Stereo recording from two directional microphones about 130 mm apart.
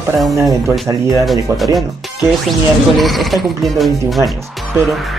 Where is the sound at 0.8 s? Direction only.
25° right (ahead or behind).